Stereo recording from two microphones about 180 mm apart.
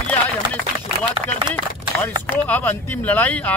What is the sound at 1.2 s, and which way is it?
Speech, 30° right (ahead or behind).